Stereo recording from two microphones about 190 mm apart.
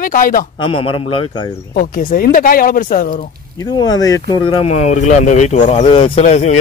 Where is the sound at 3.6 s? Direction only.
20° left (ahead or behind); by 6.5 s 35° left (ahead or behind).